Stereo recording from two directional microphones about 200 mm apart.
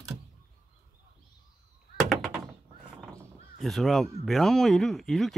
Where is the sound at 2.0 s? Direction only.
Centre (ahead or behind).